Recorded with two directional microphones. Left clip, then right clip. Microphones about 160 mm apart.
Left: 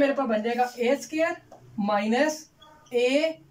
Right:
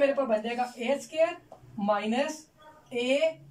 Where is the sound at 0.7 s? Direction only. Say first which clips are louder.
Left 2 dB; 15° right (ahead or behind).